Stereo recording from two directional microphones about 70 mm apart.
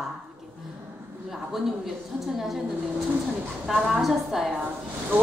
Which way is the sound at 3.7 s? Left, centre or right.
Centre.